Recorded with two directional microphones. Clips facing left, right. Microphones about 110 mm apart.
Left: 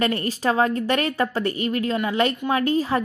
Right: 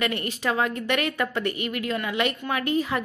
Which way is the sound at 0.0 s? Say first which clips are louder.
Left 4 dB; 35° left (ahead or behind).